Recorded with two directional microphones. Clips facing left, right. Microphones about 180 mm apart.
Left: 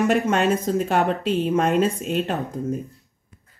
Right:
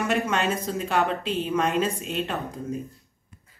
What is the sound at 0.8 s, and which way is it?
Speech, 45° left (ahead or behind).